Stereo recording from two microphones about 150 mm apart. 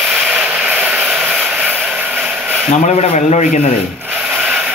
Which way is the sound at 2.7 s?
50° left (ahead or behind).